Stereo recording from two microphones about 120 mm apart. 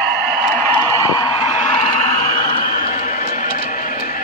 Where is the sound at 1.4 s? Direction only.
55° left (ahead or behind); by 2.4 s 85° left.